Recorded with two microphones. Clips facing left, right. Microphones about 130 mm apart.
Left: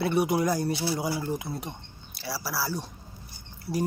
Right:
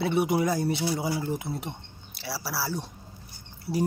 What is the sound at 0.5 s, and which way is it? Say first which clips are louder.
Speech: even; 25° right (ahead or behind).